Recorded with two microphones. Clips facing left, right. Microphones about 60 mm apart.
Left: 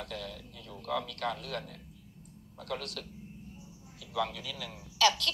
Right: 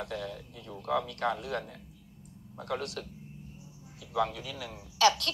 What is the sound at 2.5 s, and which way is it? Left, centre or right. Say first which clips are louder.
A man's voice: right 4 dB; right.